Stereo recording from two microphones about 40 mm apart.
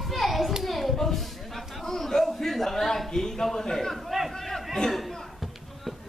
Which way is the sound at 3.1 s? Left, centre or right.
Centre.